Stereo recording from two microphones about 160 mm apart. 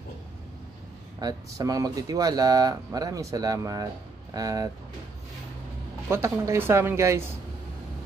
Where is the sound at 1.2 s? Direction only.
20° right (ahead or behind).